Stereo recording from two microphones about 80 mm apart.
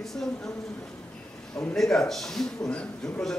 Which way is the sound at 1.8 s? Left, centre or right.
Centre.